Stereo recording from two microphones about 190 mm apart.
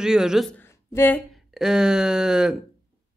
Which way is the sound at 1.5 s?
Centre (ahead or behind).